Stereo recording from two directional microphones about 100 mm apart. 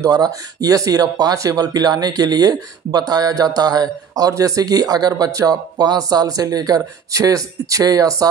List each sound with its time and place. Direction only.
0.0 s speech: 40° right (ahead or behind)